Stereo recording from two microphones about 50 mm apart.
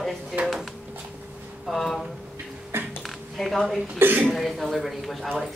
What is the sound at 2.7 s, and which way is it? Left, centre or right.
Speech, right.